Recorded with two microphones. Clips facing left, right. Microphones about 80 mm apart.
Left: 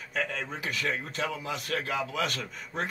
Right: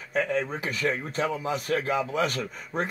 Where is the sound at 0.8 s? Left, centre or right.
Right.